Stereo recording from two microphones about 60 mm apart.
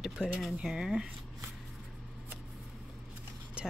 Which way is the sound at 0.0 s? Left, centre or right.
Centre.